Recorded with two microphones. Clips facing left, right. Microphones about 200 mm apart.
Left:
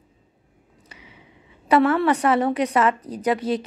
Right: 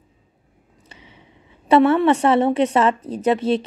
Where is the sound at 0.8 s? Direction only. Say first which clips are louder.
Right 1 dB; 25° right (ahead or behind).